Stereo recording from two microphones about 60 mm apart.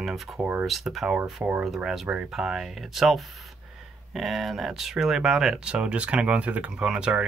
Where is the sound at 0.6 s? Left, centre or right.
Centre.